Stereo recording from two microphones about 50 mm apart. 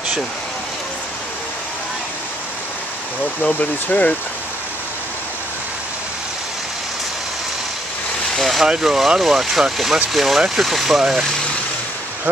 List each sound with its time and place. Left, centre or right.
3.5 s speech: left
8.4 s vehicle: centre
8.6 s speech: centre